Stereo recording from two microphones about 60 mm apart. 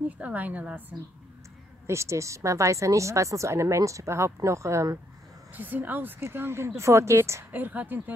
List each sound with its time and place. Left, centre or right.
0.2 s a woman's voice: right
1.9 s speech: right
5.5 s speech: right
6.8 s speech: right
7.5 s speech: right